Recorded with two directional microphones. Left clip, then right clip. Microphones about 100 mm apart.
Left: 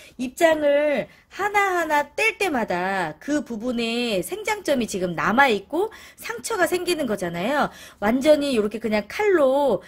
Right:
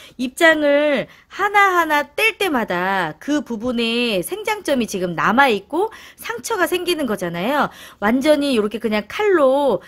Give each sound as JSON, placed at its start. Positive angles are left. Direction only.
{"t": 0.2, "sound": "speech", "side_deg": -55}
{"t": 1.3, "sound": "a woman's voice", "side_deg": -40}